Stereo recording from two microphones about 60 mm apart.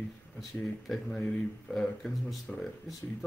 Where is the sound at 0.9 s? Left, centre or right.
Centre.